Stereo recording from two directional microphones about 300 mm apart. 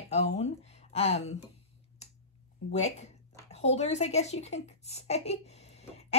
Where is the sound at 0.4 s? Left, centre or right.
Left.